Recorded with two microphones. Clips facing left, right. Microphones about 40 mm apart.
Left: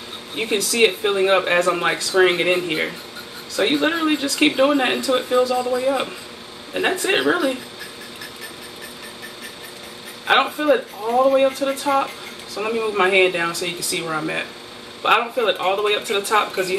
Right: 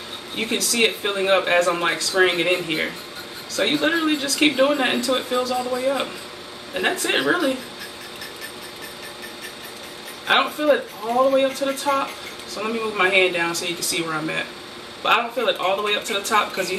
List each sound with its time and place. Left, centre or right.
0.4 s a man's voice: centre
10.2 s speech: centre
13.5 s speech: centre